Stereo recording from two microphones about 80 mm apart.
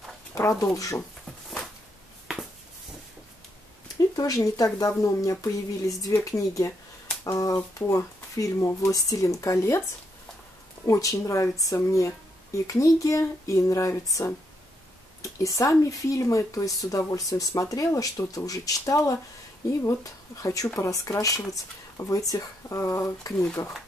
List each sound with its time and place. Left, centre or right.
0.3 s speech: left
4.2 s speech: left
10.9 s speech: left